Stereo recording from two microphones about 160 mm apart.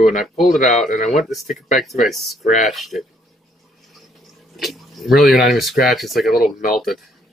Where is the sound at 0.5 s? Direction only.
50° left (ahead or behind).